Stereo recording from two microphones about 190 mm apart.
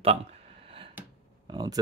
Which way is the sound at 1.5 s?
20° right (ahead or behind).